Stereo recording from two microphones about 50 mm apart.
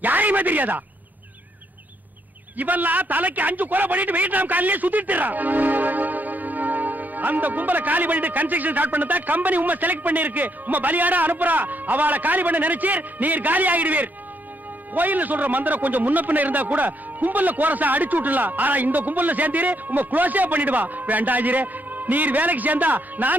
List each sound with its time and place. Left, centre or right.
0.0 s speech: right
2.5 s a man's voice: right